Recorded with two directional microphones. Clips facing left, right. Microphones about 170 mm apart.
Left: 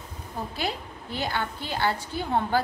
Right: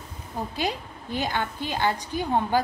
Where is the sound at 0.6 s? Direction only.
15° right (ahead or behind).